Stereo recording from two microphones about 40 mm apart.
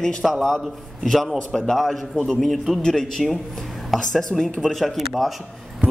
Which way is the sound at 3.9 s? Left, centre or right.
Centre.